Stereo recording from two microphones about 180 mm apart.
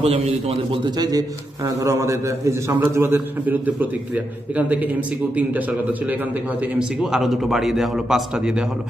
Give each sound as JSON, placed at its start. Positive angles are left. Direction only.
{"t": 0.0, "sound": "a man's voice", "side_deg": -35}
{"t": 0.9, "sound": "a man's voice", "side_deg": -20}
{"t": 6.8, "sound": "a man's voice", "side_deg": -5}